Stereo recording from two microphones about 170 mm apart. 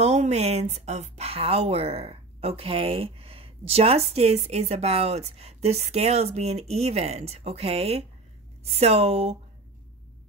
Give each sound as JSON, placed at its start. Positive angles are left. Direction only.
{"t": 0.0, "sound": "speech", "side_deg": -40}